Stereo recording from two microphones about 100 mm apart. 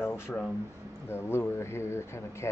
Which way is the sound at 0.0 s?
25° left (ahead or behind).